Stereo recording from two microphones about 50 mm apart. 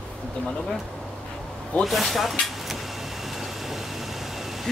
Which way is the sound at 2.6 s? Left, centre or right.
Centre.